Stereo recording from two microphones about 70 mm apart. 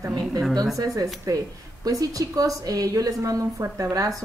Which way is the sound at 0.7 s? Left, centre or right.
Right.